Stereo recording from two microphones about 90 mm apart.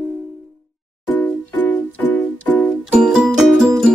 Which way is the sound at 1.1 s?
20° left (ahead or behind).